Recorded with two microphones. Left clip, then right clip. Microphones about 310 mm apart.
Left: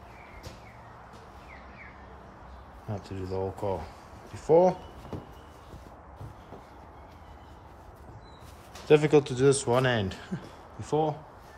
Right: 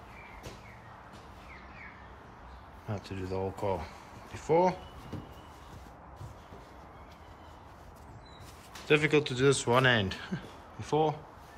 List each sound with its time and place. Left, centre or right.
2.9 s speech: centre
8.8 s speech: centre